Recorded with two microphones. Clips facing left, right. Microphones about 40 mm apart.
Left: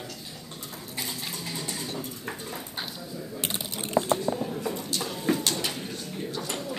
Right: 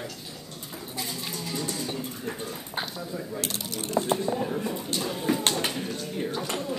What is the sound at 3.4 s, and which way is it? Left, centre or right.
Mechanisms, centre.